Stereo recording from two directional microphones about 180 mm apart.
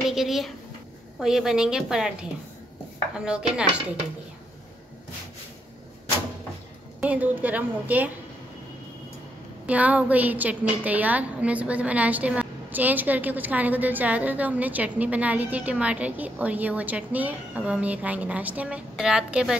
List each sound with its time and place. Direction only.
0.1 s a woman's voice: centre (ahead or behind)
3.2 s a woman's voice: 5° right (ahead or behind)
7.0 s a woman's voice: 10° right (ahead or behind)
9.7 s a woman's voice: 10° right (ahead or behind)